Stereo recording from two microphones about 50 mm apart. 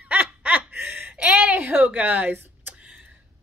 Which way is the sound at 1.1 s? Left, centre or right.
Right.